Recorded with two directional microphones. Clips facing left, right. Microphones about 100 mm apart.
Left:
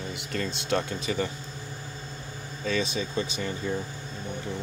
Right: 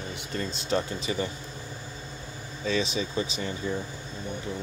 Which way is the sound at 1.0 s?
55° left (ahead or behind).